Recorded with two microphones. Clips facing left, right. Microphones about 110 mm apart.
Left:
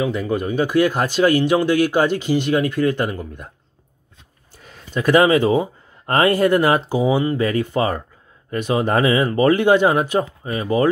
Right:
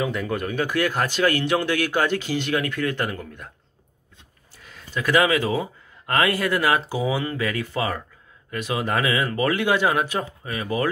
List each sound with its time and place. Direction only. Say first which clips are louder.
0.1 s speech: left 5 dB; 20° left (ahead or behind)
4.9 s speech: left 6 dB; 30° left (ahead or behind)